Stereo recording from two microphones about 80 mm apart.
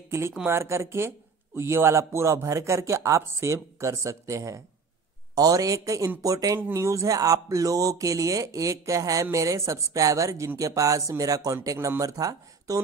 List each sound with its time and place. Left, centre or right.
0.5 s a man's voice: right